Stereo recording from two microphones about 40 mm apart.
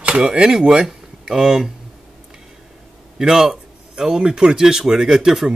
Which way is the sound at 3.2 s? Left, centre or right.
Centre.